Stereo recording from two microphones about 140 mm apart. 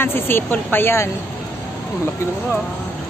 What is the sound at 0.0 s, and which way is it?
Speech, 15° left (ahead or behind).